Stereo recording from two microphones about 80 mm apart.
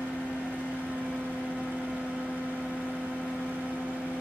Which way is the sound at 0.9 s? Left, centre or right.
Centre.